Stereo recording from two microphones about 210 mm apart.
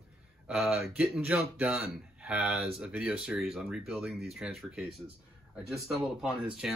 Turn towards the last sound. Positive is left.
turn(degrees=-5)  # may be behind; listen again after turning